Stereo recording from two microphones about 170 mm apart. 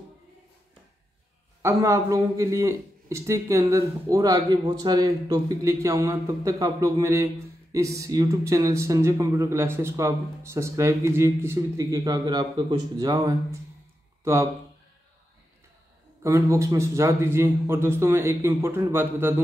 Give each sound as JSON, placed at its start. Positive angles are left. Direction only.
{"t": 1.6, "sound": "a man's voice", "side_deg": -15}
{"t": 16.2, "sound": "a man's voice", "side_deg": -15}